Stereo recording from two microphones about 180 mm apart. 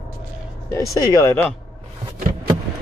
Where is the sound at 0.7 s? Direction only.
20° left (ahead or behind).